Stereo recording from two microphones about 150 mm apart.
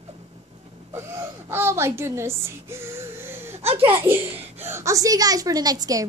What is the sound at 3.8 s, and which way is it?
A child's voice, 15° right (ahead or behind).